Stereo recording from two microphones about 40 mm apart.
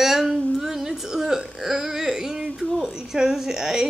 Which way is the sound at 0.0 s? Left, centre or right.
Centre.